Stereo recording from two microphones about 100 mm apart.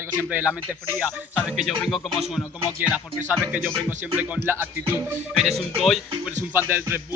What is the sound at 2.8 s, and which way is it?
Speech, 15° right (ahead or behind).